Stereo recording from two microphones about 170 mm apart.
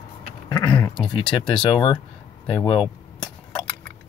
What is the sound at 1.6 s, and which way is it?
Speech, 25° left (ahead or behind).